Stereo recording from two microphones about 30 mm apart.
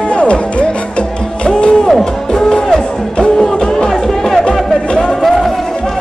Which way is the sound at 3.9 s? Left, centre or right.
Centre.